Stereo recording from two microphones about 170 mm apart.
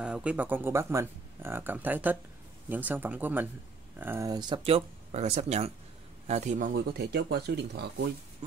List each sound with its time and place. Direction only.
0.0 s speech: 5° right (ahead or behind); by 7.8 s 75° right (ahead or behind)